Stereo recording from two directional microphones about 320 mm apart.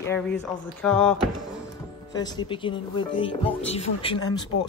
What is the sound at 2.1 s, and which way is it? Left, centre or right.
Speech, centre.